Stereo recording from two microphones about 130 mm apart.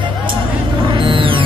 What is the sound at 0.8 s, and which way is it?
Music, 40° right (ahead or behind).